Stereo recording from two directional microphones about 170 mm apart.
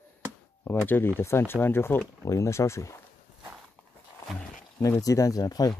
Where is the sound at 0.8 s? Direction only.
10° left (ahead or behind).